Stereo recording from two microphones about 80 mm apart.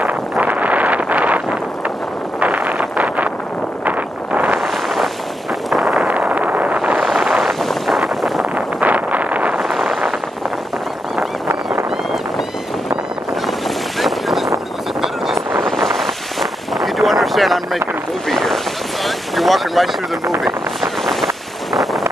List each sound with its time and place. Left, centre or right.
0.0 s wind noise: centre
4.6 s wind noise: centre
5.7 s a sound: centre
6.0 s a sound: centre
7.0 s wind noise: centre
8.5 s wind noise: centre
9.6 s vehicle: centre
13.5 s boat: centre
15.0 s vehicle: centre
15.6 s wind noise: centre
18.3 s vehicle: centre
19.0 s boat: centre
20.4 s wind noise: centre